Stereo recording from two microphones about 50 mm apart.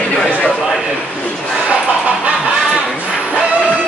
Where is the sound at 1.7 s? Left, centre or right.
Right.